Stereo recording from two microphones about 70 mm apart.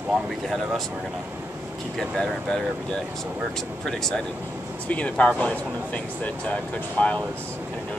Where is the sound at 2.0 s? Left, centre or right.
Centre; by 7.1 s left.